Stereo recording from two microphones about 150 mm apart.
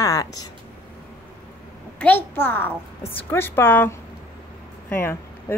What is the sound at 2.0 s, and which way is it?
A woman's voice, 10° left (ahead or behind).